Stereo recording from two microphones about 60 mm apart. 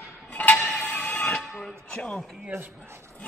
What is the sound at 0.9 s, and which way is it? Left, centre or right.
Music, left.